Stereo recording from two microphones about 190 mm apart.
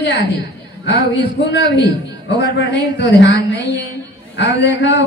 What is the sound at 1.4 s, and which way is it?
A man's voice, 65° left (ahead or behind).